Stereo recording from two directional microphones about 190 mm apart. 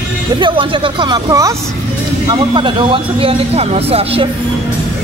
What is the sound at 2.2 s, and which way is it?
Speech, 25° right (ahead or behind).